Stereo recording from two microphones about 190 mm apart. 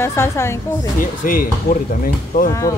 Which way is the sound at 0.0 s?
15° left (ahead or behind).